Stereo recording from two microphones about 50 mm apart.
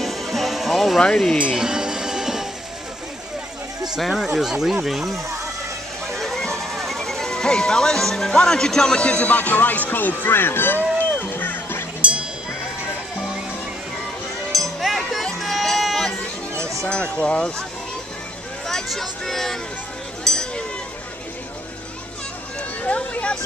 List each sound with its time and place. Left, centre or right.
0.0 s music: centre
1.0 s speech: centre
1.5 s music: centre
4.4 s speech: centre
6.1 s music: centre; by 11.8 s left
12.0 s music: right
14.5 s music: centre
16.8 s speech: left
18.9 s speech: centre
20.2 s a sound: centre